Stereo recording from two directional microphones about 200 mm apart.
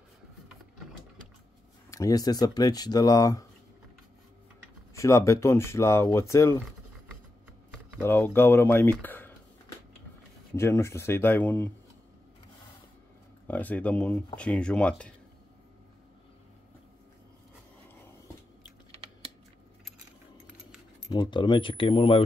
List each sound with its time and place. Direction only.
1.9 s speech: 15° left (ahead or behind)
4.9 s speech: 15° left (ahead or behind)
8.0 s speech: 10° left (ahead or behind)
10.5 s speech: 15° left (ahead or behind)
13.5 s speech: 10° left (ahead or behind)
21.1 s speech: 20° left (ahead or behind)